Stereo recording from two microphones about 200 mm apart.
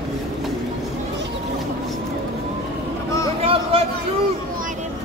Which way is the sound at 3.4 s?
30° right (ahead or behind).